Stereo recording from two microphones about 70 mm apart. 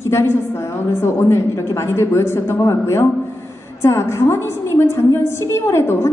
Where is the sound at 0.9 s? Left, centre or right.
Left.